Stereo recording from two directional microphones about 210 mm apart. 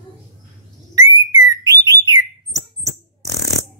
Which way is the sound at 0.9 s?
15° right (ahead or behind).